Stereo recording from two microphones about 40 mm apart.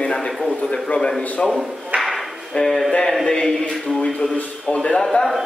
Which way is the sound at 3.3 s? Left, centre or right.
Centre.